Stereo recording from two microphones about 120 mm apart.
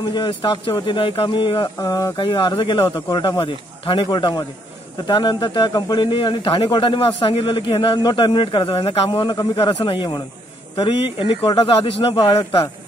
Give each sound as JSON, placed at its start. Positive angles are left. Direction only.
{"t": 0.0, "sound": "speech", "side_deg": 40}
{"t": 2.1, "sound": "speech", "side_deg": 40}
{"t": 8.0, "sound": "speech", "side_deg": 35}